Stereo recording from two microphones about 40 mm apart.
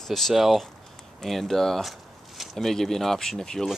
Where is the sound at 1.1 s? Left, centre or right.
Centre.